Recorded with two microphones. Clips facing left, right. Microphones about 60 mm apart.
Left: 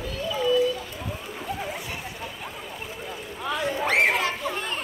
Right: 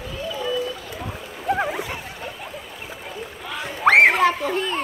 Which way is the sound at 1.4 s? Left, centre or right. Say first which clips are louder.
Right 10 dB; right.